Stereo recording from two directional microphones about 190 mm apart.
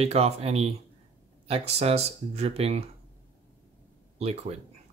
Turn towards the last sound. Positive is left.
turn(degrees=-30)  # may be behind; listen again after turning